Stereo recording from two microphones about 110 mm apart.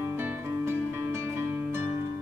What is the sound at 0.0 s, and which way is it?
Music, 20° right (ahead or behind).